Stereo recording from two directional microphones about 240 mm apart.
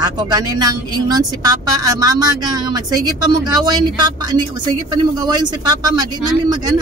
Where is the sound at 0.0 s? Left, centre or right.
Centre.